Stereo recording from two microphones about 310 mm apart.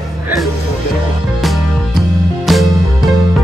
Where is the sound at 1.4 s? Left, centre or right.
Centre.